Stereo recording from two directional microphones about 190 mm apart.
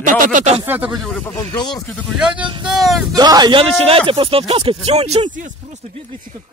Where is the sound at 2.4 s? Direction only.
25° right (ahead or behind).